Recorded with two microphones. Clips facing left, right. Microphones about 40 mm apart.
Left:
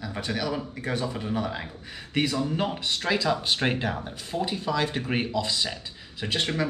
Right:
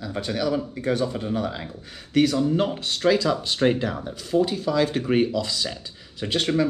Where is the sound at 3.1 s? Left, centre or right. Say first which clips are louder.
Right 4 dB; left.